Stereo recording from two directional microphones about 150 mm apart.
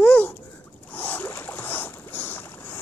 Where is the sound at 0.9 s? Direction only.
10° left (ahead or behind).